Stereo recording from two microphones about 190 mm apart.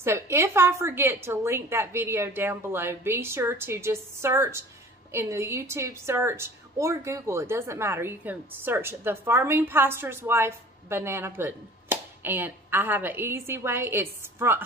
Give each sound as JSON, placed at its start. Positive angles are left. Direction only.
{"t": 0.0, "sound": "a woman's voice", "side_deg": -15}